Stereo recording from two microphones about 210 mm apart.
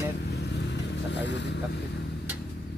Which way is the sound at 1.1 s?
55° left (ahead or behind).